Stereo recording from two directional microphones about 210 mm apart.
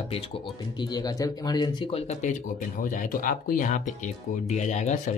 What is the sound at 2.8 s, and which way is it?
Speech, 40° left (ahead or behind).